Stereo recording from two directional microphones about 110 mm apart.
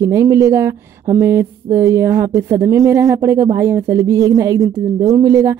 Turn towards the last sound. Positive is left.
turn(degrees=-30)  # may be behind; listen again after turning